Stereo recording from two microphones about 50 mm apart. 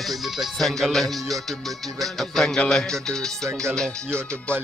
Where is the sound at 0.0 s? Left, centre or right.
Centre.